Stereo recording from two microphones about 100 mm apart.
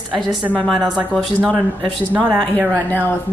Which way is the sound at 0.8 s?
5° right (ahead or behind).